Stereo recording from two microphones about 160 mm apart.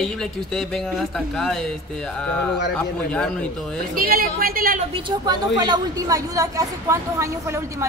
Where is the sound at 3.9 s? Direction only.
65° right (ahead or behind).